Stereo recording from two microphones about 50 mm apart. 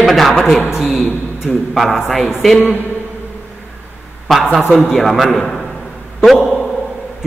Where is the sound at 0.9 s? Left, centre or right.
Left.